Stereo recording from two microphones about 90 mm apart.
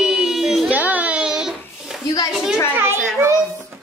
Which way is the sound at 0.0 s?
5° right (ahead or behind).